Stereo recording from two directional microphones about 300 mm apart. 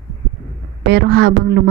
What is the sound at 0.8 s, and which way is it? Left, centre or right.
Speech, right.